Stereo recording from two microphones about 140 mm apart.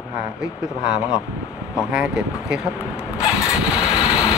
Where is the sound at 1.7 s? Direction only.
5° right (ahead or behind).